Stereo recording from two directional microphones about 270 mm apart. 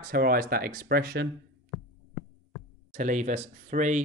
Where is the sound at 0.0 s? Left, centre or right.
Right.